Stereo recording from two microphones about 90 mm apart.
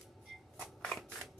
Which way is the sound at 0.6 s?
5° left (ahead or behind).